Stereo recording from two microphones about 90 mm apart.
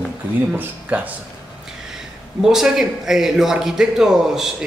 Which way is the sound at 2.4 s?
5° right (ahead or behind).